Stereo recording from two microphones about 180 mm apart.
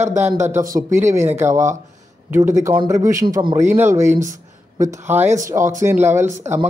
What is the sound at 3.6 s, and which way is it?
Speech, 15° right (ahead or behind).